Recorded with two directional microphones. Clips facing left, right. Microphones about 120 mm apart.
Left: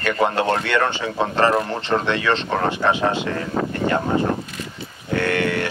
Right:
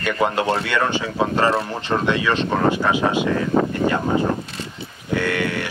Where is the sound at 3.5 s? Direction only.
25° right (ahead or behind).